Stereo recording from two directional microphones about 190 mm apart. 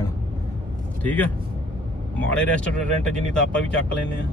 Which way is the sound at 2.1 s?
5° left (ahead or behind).